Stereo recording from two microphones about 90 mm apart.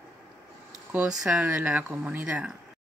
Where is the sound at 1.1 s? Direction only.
5° right (ahead or behind).